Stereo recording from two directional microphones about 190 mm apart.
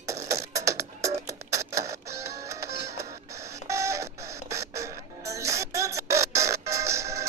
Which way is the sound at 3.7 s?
15° right (ahead or behind).